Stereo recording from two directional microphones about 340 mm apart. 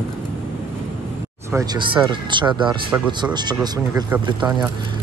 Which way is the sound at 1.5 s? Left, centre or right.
Centre.